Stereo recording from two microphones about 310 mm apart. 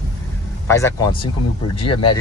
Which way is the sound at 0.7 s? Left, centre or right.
Centre.